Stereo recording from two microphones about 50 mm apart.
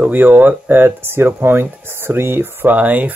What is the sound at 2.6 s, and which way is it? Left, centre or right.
Speech, right.